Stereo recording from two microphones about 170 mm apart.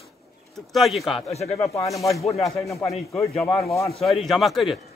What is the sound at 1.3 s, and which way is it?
Speech, 40° left (ahead or behind).